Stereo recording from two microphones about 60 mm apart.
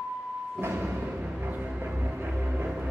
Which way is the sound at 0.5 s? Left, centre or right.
Right.